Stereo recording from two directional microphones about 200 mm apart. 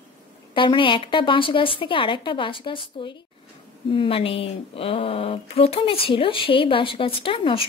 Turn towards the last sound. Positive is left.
turn(degrees=25)  # may be behind; listen again after turning